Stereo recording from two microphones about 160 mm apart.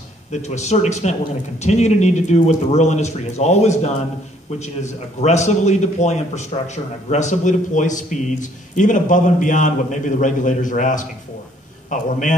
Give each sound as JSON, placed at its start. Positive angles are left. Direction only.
{"t": 0.3, "sound": "a man's voice", "side_deg": 45}